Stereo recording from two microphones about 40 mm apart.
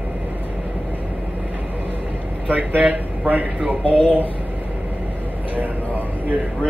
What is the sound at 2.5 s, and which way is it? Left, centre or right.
Speech, right.